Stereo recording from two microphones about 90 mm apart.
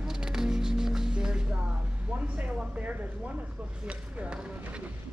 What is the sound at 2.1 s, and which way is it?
Speech, 15° right (ahead or behind).